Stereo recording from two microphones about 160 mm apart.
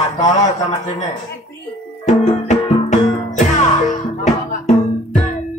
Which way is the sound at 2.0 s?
45° left (ahead or behind).